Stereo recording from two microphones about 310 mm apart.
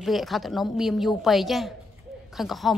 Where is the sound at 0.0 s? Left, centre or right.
Centre.